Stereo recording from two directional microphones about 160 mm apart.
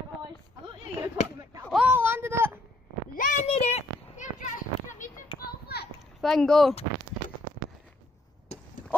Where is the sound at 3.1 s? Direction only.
50° left (ahead or behind).